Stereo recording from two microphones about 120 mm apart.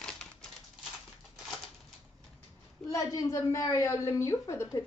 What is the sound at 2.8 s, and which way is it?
A woman's voice, 30° left (ahead or behind).